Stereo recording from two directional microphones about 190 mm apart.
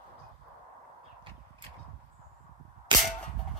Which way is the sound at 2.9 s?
25° right (ahead or behind).